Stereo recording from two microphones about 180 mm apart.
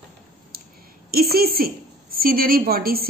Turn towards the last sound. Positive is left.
turn(degrees=-55)  # may be behind; listen again after turning